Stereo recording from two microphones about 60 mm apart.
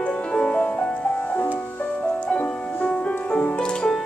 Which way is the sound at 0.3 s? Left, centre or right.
Centre.